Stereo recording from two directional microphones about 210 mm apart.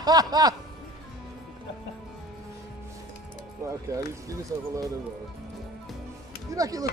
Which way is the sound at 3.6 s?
15° right (ahead or behind).